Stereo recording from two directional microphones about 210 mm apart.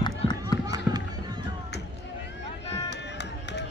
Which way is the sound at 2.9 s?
55° left (ahead or behind).